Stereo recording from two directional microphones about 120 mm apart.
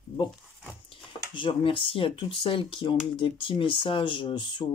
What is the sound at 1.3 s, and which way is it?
Speech, 45° left (ahead or behind).